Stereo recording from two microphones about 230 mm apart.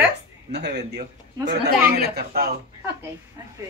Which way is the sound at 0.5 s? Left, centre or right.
Right.